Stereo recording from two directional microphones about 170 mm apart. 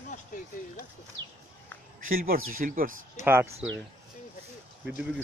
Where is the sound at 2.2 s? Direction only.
60° right (ahead or behind).